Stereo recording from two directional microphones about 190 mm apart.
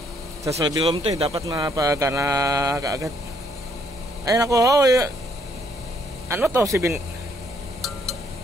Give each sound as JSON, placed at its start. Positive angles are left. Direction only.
{"t": 0.5, "sound": "speech", "side_deg": -25}
{"t": 1.5, "sound": "speech", "side_deg": -15}
{"t": 4.3, "sound": "speech", "side_deg": -15}
{"t": 6.3, "sound": "speech", "side_deg": -10}